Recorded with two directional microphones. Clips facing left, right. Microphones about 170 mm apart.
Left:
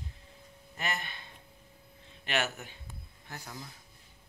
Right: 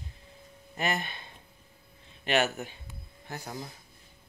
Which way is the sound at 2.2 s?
20° right (ahead or behind).